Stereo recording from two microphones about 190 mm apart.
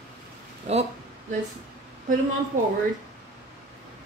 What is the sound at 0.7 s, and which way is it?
Speech, 35° right (ahead or behind).